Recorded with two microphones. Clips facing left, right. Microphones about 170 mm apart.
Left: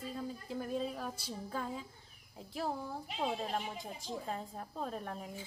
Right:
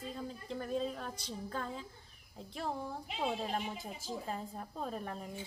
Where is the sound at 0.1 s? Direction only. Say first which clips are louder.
Left 1 dB; 5° left (ahead or behind).